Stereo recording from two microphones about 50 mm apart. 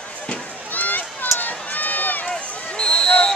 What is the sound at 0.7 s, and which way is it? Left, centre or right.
Run, left.